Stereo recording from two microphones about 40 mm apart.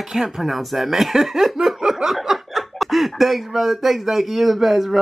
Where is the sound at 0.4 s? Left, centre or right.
Centre.